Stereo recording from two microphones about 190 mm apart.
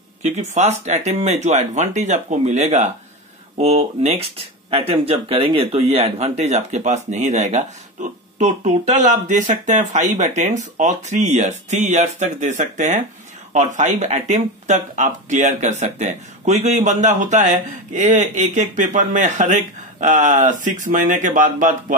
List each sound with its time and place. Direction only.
0.2 s speech: 35° right (ahead or behind)